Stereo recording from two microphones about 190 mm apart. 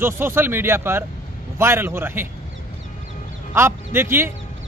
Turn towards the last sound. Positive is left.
turn(degrees=-10)  # may be behind; listen again after turning